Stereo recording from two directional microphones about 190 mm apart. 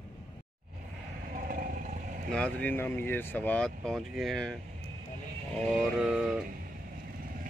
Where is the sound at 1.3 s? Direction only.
45° right (ahead or behind).